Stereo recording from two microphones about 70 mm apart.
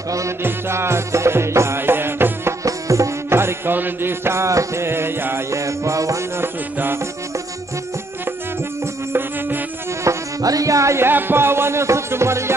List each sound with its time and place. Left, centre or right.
0.4 s music: right
2.6 s music: right
3.3 s music: right
5.6 s music: right
6.3 s music: right
10.0 s music: right
11.1 s music: right